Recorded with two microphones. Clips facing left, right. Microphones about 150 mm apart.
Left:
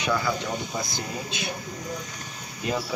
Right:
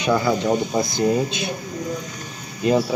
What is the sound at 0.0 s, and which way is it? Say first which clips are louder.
Speech: right 7 dB; 20° right (ahead or behind).